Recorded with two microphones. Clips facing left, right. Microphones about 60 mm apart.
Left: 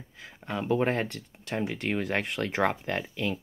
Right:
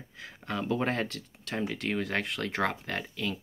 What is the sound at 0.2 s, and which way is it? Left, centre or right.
Speech, centre.